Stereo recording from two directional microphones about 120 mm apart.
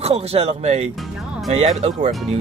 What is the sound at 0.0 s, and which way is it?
Speech, 60° right (ahead or behind).